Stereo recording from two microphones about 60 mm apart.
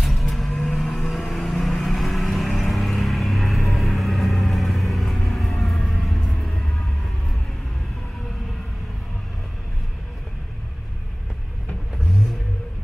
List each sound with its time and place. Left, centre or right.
0.0 s vehicle: centre